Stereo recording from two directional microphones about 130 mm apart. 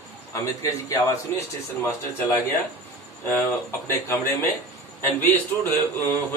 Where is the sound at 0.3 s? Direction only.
25° left (ahead or behind).